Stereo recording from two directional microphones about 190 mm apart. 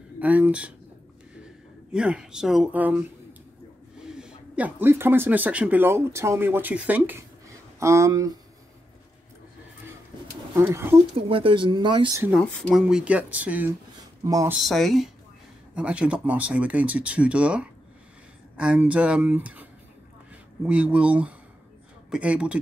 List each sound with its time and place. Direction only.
0.2 s speech: 10° right (ahead or behind)
10.5 s speech: 15° right (ahead or behind)
11.1 s speech: 30° right (ahead or behind)
12.4 s speech: 5° left (ahead or behind)
12.8 s speech: 5° right (ahead or behind)
14.6 s speech: centre (ahead or behind)